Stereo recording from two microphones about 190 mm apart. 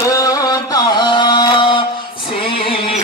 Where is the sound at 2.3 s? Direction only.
30° left (ahead or behind).